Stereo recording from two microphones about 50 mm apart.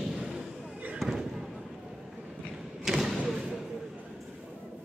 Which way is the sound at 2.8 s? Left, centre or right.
Centre.